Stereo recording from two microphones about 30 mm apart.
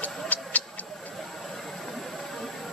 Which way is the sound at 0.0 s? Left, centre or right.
Left.